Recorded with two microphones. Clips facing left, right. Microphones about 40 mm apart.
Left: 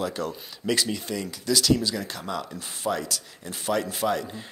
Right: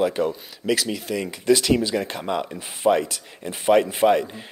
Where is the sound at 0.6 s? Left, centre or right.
Centre.